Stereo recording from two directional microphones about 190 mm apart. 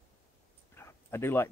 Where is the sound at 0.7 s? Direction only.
15° left (ahead or behind).